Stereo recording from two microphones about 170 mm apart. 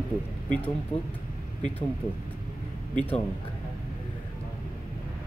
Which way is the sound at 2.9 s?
10° left (ahead or behind).